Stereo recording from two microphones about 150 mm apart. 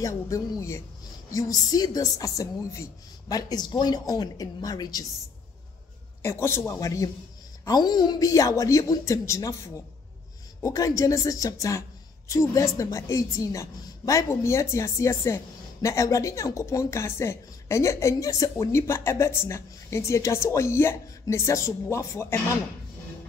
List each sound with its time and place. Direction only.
0.0 s a woman's voice: 20° left (ahead or behind)
6.2 s a man's voice: 15° left (ahead or behind)